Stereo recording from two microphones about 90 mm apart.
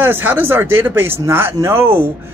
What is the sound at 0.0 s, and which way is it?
Speech, 20° right (ahead or behind).